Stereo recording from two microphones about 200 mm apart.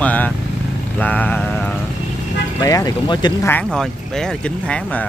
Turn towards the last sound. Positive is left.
turn(degrees=5)  # may be behind; listen again after turning